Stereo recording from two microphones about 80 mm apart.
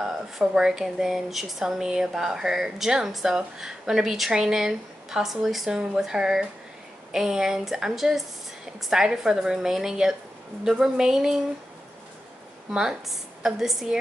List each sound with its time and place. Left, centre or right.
0.0 s a woman's voice: centre
12.7 s a woman's voice: centre